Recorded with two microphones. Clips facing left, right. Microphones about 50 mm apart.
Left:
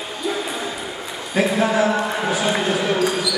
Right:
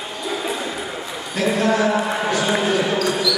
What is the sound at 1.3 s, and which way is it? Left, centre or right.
Speech, centre.